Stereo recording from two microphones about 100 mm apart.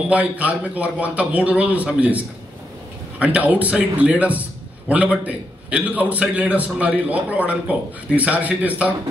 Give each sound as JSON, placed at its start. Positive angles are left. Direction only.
{"t": 0.1, "sound": "a man's voice", "side_deg": -15}